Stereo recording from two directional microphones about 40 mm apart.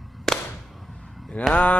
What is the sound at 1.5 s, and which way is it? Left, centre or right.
Speech, left.